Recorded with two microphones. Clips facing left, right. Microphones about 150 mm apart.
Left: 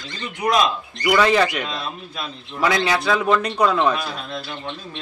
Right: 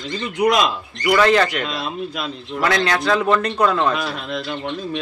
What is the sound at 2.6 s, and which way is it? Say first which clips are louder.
A man's voice: even; 10° left (ahead or behind).